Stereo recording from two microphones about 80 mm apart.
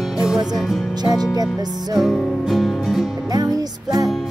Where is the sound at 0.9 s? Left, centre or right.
Right.